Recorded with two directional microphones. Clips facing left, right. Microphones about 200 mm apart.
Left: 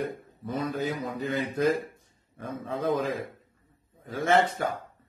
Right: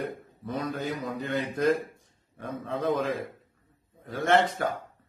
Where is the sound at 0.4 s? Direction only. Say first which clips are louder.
Left 2 dB; centre (ahead or behind).